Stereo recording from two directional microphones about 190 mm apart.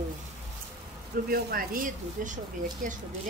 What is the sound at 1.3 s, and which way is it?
A woman's voice, 50° right (ahead or behind).